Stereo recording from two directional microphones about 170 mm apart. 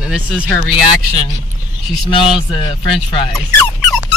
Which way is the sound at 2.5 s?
30° left (ahead or behind).